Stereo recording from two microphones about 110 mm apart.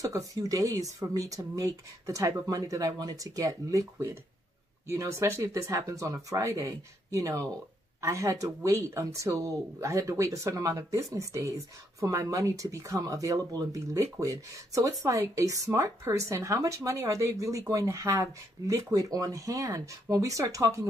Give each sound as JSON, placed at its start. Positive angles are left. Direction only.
{"t": 0.0, "sound": "speech", "side_deg": -35}